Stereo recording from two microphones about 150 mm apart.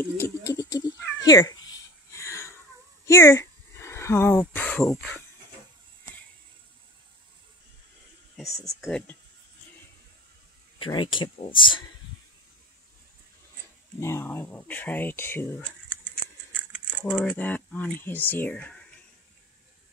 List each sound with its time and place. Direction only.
0.0 s cat: 15° left (ahead or behind)
3.1 s speech: 20° left (ahead or behind)
8.4 s speech: centre (ahead or behind)
10.8 s speech: 30° left (ahead or behind)
13.9 s speech: 15° left (ahead or behind)
17.2 s speech: 10° left (ahead or behind)